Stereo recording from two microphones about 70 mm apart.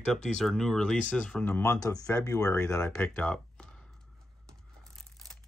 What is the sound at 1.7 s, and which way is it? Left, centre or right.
Speech, left.